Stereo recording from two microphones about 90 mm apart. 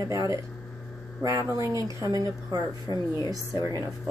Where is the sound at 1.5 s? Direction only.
40° right (ahead or behind).